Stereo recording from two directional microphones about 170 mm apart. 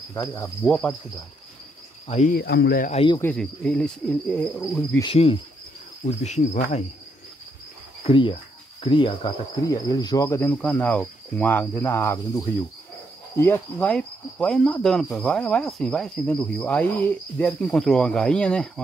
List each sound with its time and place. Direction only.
0.1 s cricket: 15° left (ahead or behind)
0.6 s cricket: 5° left (ahead or behind)
2.0 s speech: 40° left (ahead or behind)
2.3 s speech: 75° left (ahead or behind)
3.2 s cricket: 10° left (ahead or behind)
5.0 s speech: 35° left (ahead or behind)
6.0 s cricket: 45° left (ahead or behind)
8.1 s cricket: 30° left (ahead or behind); by 12.2 s 15° left (ahead or behind)
13.4 s cricket: 10° left (ahead or behind)